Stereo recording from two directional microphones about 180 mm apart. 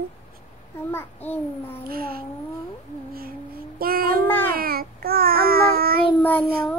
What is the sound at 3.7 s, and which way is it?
Child singing, 55° right (ahead or behind).